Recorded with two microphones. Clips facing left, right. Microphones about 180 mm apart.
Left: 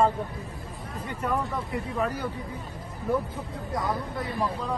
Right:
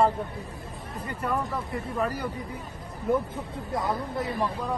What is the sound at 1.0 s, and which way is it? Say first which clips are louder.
Speech: left 1 dB; 5° left (ahead or behind).